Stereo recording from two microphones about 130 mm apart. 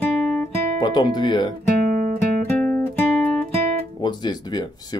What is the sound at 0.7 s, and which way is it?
Speech, 35° left (ahead or behind).